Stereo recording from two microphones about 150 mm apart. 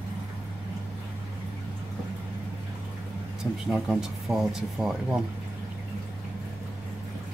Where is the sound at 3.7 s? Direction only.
5° right (ahead or behind).